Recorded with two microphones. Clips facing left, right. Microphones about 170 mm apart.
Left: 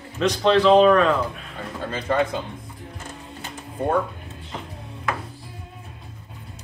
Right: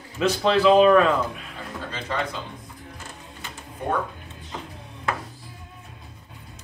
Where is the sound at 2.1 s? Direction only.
50° left (ahead or behind).